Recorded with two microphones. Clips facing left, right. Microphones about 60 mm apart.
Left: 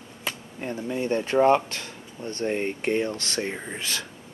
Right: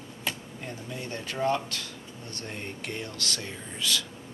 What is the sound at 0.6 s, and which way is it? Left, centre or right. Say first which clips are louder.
Speech: left 10 dB; left.